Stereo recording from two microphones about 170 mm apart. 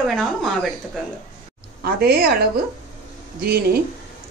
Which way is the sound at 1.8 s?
65° right (ahead or behind).